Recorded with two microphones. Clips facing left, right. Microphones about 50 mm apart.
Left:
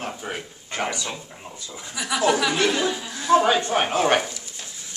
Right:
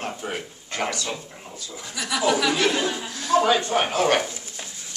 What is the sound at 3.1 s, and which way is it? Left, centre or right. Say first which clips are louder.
Speech: left 2 dB; centre.